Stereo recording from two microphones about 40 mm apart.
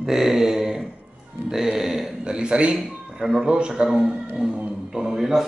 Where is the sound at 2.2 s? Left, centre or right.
Right.